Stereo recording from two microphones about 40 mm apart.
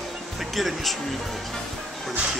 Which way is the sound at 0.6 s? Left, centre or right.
Centre.